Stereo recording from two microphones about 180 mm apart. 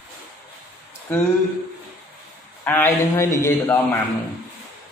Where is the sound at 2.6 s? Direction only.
10° left (ahead or behind).